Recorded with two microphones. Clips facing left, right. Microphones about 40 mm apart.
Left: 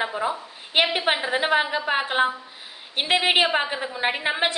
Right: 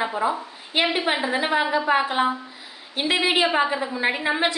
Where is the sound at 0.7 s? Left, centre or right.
Left.